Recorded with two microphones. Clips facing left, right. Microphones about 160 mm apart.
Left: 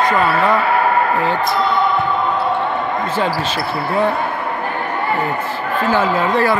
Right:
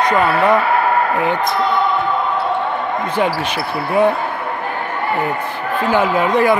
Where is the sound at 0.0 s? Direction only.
20° right (ahead or behind).